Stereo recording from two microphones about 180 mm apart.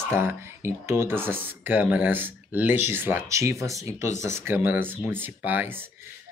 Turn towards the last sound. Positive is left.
turn(degrees=-10)  # may be behind; listen again after turning